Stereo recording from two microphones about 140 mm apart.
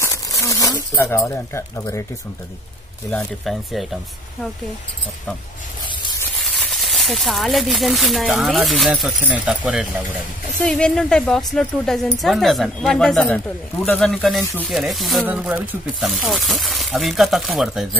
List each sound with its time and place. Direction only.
0.0 s crumpling: 20° left (ahead or behind)
0.9 s speech: 20° left (ahead or behind)
3.4 s speech: centre (ahead or behind)
6.4 s speech: centre (ahead or behind)
10.6 s speech: 5° left (ahead or behind)